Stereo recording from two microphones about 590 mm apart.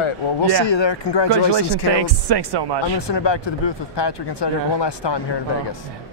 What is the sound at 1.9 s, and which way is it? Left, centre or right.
Speech, right.